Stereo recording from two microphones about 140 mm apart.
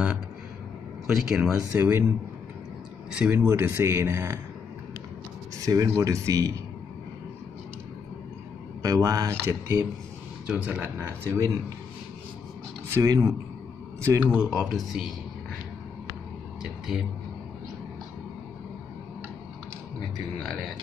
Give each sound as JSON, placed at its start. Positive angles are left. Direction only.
{"t": 1.0, "sound": "speech", "side_deg": -5}
{"t": 1.6, "sound": "speech", "side_deg": -15}
{"t": 3.1, "sound": "speech", "side_deg": -10}
{"t": 5.7, "sound": "speech", "side_deg": -25}
{"t": 8.8, "sound": "speech", "side_deg": -25}
{"t": 11.0, "sound": "speech", "side_deg": -20}
{"t": 12.9, "sound": "speech", "side_deg": -20}
{"t": 14.3, "sound": "speech", "side_deg": -5}
{"t": 16.6, "sound": "a sound", "side_deg": -5}